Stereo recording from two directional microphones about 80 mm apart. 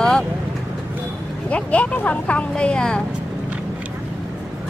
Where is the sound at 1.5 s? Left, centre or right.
Centre.